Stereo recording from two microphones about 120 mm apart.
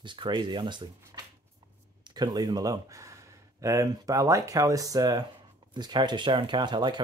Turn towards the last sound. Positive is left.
turn(degrees=-40)  # may be behind; listen again after turning